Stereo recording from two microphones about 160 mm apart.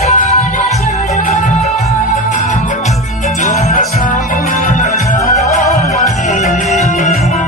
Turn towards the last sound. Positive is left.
turn(degrees=45)  # may be behind; listen again after turning